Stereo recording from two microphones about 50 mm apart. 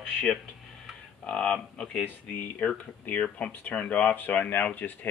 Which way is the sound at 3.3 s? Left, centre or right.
Left.